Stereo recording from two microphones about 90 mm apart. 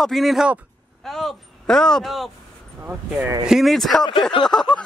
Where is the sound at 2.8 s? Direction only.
20° right (ahead or behind).